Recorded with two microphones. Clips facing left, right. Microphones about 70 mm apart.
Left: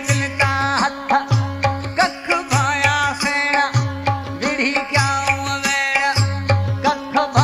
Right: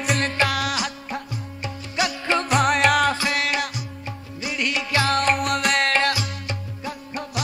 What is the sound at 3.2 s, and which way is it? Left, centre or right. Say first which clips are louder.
Music: left 3 dB; left.